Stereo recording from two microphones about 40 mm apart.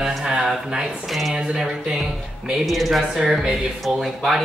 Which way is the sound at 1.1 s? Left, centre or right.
Centre.